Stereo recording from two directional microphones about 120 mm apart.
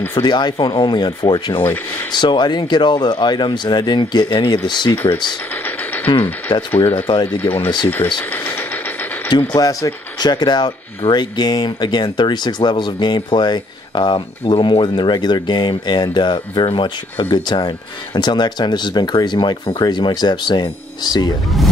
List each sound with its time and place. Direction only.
0.1 s speech: 40° left (ahead or behind)
4.9 s speech: 15° left (ahead or behind)
5.5 s music: 15° left (ahead or behind)
6.7 s speech: 15° left (ahead or behind)
8.2 s mechanisms: 15° left (ahead or behind)
9.5 s speech: 30° left (ahead or behind)